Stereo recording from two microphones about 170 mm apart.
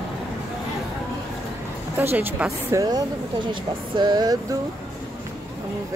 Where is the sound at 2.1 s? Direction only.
10° right (ahead or behind).